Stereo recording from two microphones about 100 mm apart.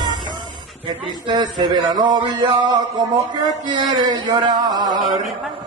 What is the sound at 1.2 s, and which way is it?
Speech, 50° right (ahead or behind).